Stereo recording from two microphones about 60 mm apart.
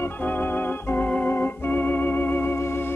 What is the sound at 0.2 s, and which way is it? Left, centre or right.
Organ, left.